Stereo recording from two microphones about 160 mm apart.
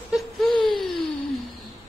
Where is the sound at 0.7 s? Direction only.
Centre (ahead or behind).